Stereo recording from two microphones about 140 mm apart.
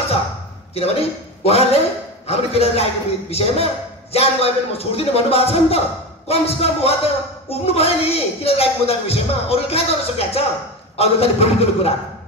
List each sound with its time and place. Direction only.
0.7 s a man's voice: 45° left (ahead or behind)